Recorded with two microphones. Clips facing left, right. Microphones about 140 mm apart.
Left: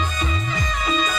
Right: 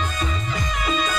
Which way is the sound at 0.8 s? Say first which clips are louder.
Left 1 dB; 5° right (ahead or behind).